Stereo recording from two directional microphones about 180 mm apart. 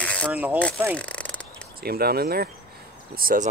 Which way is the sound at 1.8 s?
60° right (ahead or behind).